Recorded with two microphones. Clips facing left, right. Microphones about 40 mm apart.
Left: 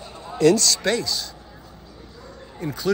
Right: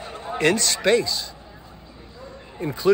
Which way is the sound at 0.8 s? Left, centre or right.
Right.